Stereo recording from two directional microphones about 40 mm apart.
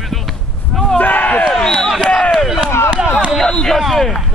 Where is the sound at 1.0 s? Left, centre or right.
Left.